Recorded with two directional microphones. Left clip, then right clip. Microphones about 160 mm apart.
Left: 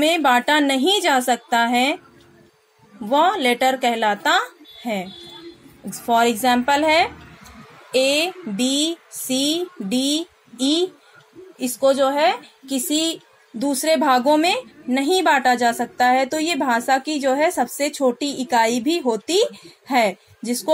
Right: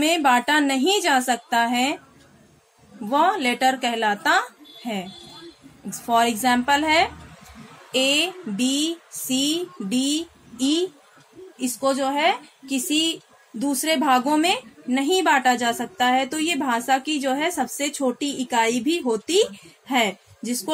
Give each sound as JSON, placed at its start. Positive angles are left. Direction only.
{"t": 0.0, "sound": "a woman's voice", "side_deg": 25}
{"t": 3.1, "sound": "a woman's voice", "side_deg": 20}
{"t": 8.1, "sound": "a woman's voice", "side_deg": 20}